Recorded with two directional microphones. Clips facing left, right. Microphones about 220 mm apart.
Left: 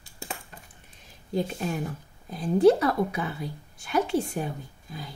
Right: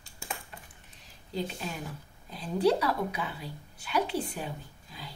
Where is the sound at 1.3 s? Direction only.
50° left (ahead or behind).